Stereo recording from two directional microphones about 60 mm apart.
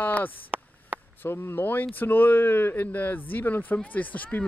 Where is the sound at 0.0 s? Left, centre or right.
Left.